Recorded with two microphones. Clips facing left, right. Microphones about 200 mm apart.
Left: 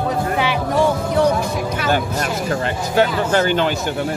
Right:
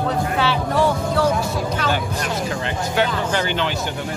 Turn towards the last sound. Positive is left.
turn(degrees=45)  # may be behind; listen again after turning